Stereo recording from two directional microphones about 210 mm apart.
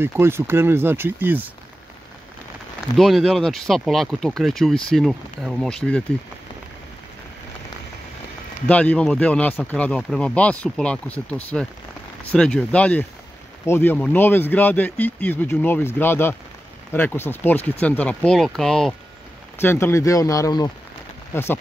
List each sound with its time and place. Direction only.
0.0 s speech: 10° right (ahead or behind)
3.0 s speech: centre (ahead or behind)
8.6 s speech: 5° left (ahead or behind)